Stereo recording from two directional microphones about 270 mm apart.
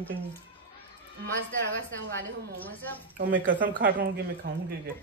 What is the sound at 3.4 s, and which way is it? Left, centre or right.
Speech, right.